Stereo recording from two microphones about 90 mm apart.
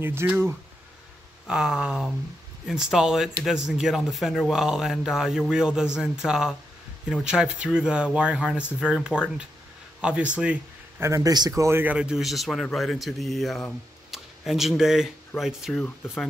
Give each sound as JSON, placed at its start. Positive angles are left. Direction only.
{"t": 0.0, "sound": "speech", "side_deg": -25}
{"t": 1.5, "sound": "speech", "side_deg": -5}
{"t": 11.0, "sound": "a man's voice", "side_deg": -35}
{"t": 11.8, "sound": "speech", "side_deg": -15}